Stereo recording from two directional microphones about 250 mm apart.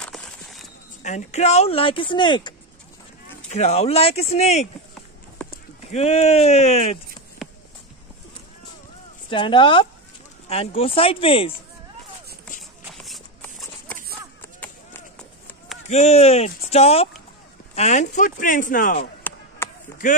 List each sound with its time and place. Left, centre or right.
0.0 s a sound: centre
1.0 s speech: left
7.4 s a sound: centre
9.3 s speech: centre
12.9 s horse: centre
15.9 s speech: left
19.2 s chop: centre
20.0 s speech: left